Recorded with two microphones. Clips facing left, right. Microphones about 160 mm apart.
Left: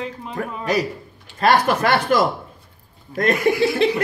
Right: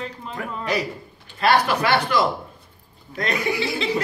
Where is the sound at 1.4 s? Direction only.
45° left (ahead or behind).